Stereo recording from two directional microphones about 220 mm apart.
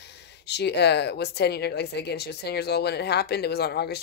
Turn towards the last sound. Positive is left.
turn(degrees=50)  # may be behind; listen again after turning